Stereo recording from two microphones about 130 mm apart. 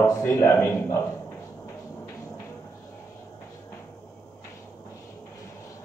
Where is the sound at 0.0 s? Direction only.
25° left (ahead or behind).